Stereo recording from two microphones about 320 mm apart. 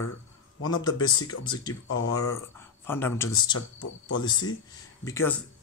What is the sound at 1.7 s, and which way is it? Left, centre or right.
Speech, left.